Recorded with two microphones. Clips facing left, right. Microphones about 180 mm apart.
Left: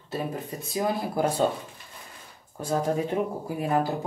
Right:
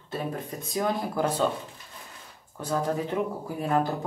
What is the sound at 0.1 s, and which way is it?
Speech, 10° left (ahead or behind).